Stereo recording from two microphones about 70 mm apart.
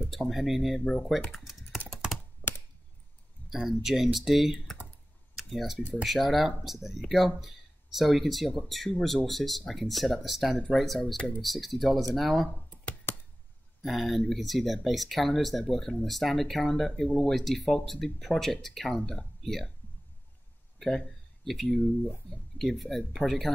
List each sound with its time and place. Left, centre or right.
0.1 s speech: centre
1.3 s typing: centre
2.4 s a sound: left
3.4 s speech: centre
13.1 s a sound: left
13.8 s speech: centre
21.5 s speech: centre